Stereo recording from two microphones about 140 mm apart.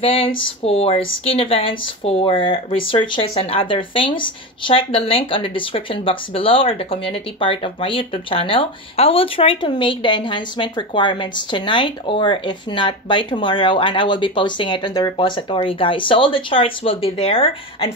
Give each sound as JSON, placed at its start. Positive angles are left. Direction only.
{"t": 0.0, "sound": "speech", "side_deg": 40}